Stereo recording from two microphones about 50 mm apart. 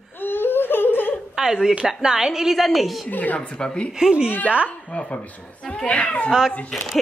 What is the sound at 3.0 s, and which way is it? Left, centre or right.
Speech, left.